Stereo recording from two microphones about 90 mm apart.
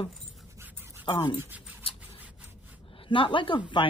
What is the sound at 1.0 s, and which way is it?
Speech, 60° left (ahead or behind).